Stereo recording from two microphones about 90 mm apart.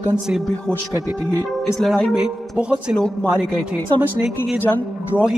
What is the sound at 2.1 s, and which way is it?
Speech, 5° right (ahead or behind).